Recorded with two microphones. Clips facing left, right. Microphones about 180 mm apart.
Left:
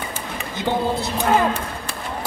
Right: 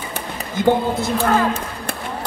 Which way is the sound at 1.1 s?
20° left (ahead or behind).